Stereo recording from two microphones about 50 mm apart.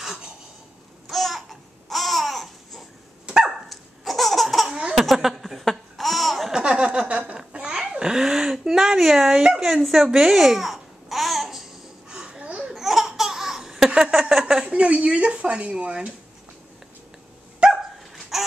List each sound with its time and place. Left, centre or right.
0.0 s a sound: centre
1.1 s babbling: centre
3.3 s dog: centre
3.6 s laughter: centre
4.6 s laughter: right
4.9 s laughter: centre
6.5 s a sound: centre
12.1 s babbling: centre
12.7 s laughter: centre
13.8 s a sound: centre
14.4 s a woman's voice: centre
14.7 s speech: right
17.6 s dog: right
18.3 s a sound: centre